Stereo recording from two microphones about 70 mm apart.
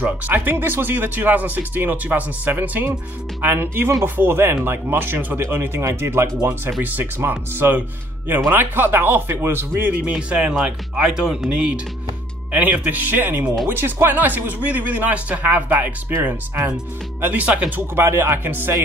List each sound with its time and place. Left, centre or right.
0.0 s speech: right
9.9 s speech: centre
17.2 s speech: right